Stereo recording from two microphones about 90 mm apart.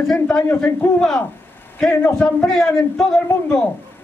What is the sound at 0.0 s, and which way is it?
Speech, 5° left (ahead or behind).